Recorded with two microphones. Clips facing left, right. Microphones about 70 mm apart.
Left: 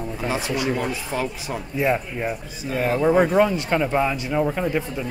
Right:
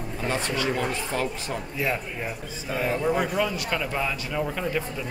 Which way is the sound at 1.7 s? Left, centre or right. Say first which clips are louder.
Left 8 dB; left.